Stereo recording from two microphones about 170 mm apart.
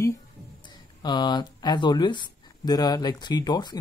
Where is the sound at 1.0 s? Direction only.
25° left (ahead or behind).